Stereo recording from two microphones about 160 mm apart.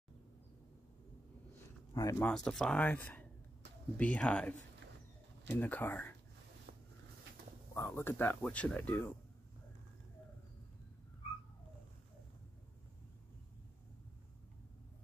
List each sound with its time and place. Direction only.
2.0 s speech: 20° left (ahead or behind)
2.2 s speech: 5° left (ahead or behind)
7.7 s speech: 15° left (ahead or behind)